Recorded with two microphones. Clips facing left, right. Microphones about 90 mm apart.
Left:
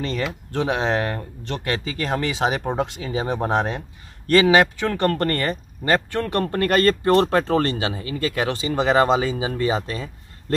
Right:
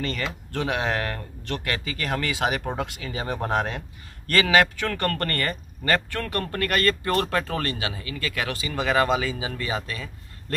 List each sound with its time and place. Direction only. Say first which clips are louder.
0.2 s speech: left 4 dB; 20° left (ahead or behind)